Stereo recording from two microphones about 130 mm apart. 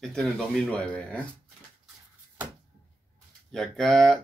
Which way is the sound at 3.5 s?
5° left (ahead or behind).